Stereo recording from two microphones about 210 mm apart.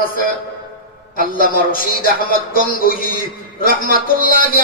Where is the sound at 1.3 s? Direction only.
45° left (ahead or behind).